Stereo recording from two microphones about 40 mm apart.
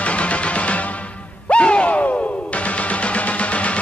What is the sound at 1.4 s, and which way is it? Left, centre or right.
Music, left.